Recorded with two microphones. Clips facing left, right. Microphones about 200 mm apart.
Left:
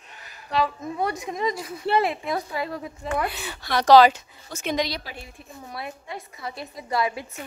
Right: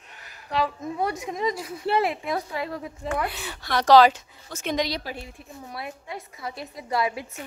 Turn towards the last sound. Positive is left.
turn(degrees=-5)  # may be behind; listen again after turning